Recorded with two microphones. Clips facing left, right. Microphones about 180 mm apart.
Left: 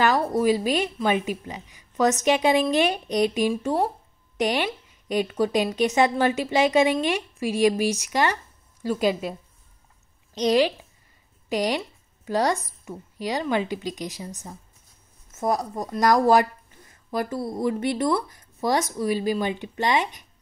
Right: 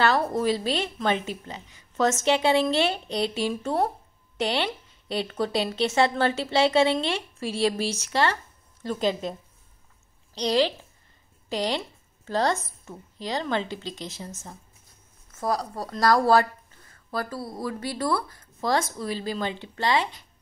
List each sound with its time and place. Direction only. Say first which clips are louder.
0.0 s a woman's voice: left 2 dB; 10° left (ahead or behind)